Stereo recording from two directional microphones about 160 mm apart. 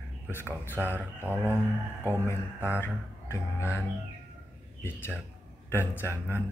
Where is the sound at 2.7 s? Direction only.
15° left (ahead or behind).